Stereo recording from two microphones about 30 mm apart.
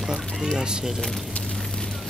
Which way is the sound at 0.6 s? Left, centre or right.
Right.